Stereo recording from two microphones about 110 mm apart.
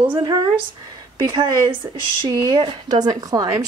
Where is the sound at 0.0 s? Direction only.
45° right (ahead or behind).